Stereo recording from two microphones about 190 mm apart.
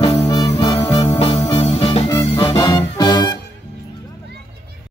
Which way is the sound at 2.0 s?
20° left (ahead or behind).